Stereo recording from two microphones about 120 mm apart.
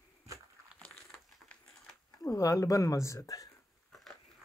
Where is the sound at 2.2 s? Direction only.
30° left (ahead or behind).